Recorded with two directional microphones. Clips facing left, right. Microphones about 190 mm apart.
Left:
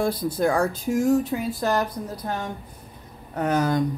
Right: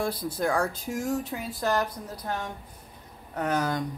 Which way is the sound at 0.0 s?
25° left (ahead or behind).